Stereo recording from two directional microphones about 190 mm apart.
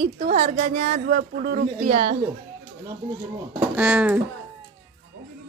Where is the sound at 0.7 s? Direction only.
50° right (ahead or behind).